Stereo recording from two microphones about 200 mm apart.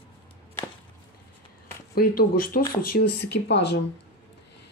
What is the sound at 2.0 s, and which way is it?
Speech, 45° left (ahead or behind).